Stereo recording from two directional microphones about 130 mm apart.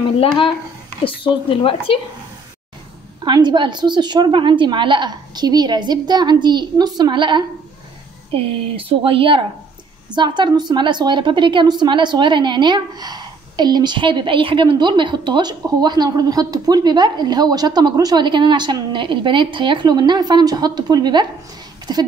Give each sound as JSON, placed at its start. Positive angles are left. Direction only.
{"t": 1.0, "sound": "speech", "side_deg": 40}
{"t": 3.3, "sound": "a woman's voice", "side_deg": -35}